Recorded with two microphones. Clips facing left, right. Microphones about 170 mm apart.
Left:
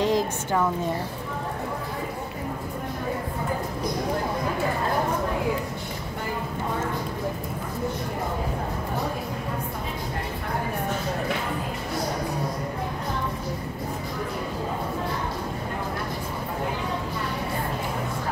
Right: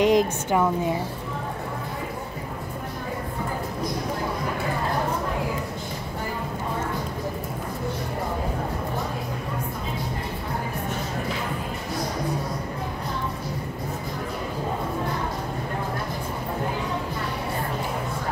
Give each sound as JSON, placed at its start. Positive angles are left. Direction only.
{"t": 0.0, "sound": "a woman's voice", "side_deg": -15}